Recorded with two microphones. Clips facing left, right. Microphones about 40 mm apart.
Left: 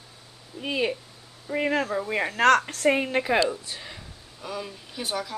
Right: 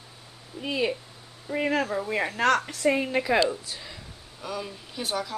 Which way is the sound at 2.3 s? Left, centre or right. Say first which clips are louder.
Left 5 dB; left.